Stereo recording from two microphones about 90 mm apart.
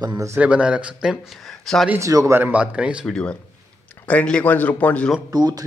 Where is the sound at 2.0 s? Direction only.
35° right (ahead or behind).